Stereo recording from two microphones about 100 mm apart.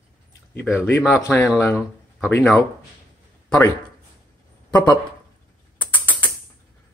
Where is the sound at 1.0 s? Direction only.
10° right (ahead or behind).